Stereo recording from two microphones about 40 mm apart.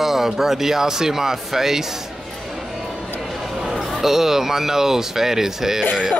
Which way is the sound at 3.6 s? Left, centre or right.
Centre.